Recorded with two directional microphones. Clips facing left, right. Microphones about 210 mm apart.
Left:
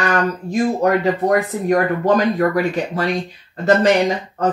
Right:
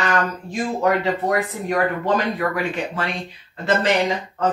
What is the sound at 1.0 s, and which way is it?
Speech, 40° left (ahead or behind).